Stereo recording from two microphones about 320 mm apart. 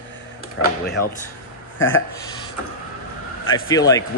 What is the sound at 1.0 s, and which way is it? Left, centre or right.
Speech, left.